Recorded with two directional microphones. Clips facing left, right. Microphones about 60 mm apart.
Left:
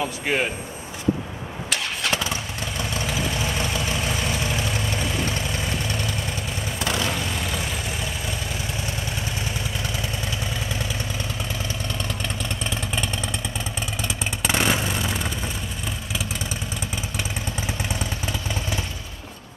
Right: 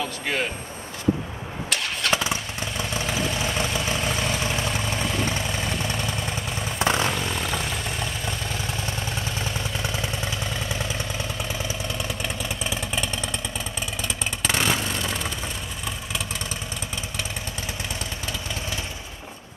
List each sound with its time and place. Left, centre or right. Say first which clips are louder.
0.0 s speech: left 3 dB; left
2.0 s vehicle: right 2 dB; centre
2.9 s vehicle: even; centre
6.8 s vehicle: right 4 dB; right
7.1 s vehicle: right 1 dB; centre
12.6 s vehicle: even; centre